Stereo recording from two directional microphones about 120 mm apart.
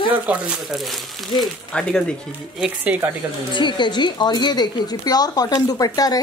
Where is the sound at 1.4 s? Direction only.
5° left (ahead or behind).